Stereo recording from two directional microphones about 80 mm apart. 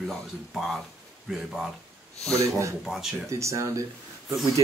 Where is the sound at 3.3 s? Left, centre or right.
Right.